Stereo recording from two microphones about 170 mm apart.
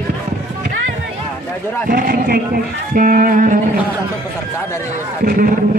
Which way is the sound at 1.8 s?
55° right (ahead or behind).